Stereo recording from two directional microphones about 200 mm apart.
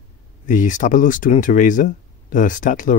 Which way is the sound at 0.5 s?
40° left (ahead or behind).